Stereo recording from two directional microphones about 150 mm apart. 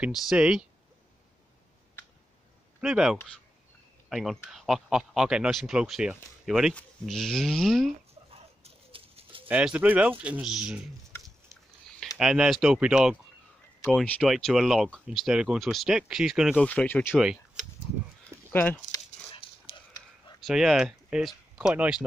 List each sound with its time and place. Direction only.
0.0 s speech: 5° right (ahead or behind)
2.8 s speech: 5° right (ahead or behind)
8.3 s a sound: 40° right (ahead or behind)
9.5 s speech: 10° right (ahead or behind)
12.2 s speech: 5° right (ahead or behind)
14.2 s speech: centre (ahead or behind)
16.6 s speech: 10° left (ahead or behind)
17.2 s speech: 5° right (ahead or behind)
18.5 s speech: 15° left (ahead or behind)
19.3 s dog: 35° left (ahead or behind)
20.3 s speech: centre (ahead or behind)